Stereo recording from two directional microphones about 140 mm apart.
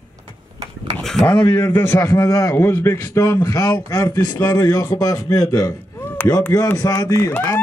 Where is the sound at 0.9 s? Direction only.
5° left (ahead or behind).